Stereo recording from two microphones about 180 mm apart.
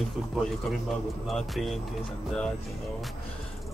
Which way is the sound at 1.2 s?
Centre (ahead or behind).